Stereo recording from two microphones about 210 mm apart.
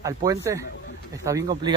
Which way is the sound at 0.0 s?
15° right (ahead or behind).